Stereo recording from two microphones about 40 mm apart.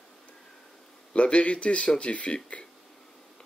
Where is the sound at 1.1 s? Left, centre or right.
Left.